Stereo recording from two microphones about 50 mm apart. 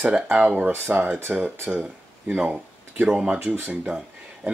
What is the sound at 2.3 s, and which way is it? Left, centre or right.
Speech, right.